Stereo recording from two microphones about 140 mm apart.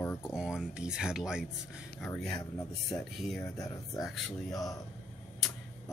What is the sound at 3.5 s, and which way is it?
Speech, 25° left (ahead or behind).